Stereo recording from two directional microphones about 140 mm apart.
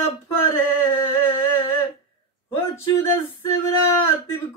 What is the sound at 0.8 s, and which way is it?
Speech, 20° left (ahead or behind).